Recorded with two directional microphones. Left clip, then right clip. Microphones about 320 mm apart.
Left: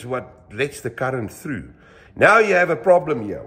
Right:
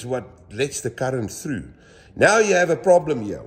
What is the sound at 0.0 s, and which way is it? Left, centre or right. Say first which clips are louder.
A man's voice: even; centre.